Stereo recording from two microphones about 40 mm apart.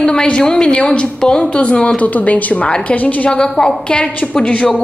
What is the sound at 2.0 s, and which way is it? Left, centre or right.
A woman's voice, left.